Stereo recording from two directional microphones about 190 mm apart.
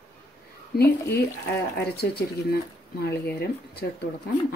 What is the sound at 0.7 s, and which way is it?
A woman's voice, 55° left (ahead or behind).